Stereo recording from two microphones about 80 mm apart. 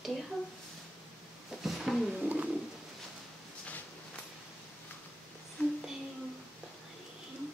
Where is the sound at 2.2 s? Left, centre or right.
Centre.